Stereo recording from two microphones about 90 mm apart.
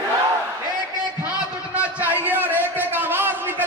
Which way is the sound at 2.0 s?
20° right (ahead or behind).